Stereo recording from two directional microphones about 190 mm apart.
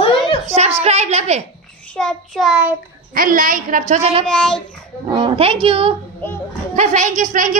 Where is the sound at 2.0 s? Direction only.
Centre (ahead or behind).